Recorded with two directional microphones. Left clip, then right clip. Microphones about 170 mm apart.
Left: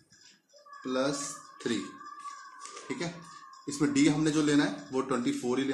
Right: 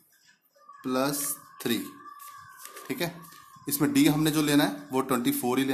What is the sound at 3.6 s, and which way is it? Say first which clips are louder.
Speech: right 3 dB; 60° right (ahead or behind).